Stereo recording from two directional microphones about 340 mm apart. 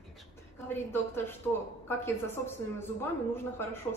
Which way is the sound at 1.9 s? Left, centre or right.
Centre.